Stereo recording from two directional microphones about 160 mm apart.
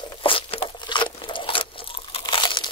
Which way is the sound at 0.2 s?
35° left (ahead or behind).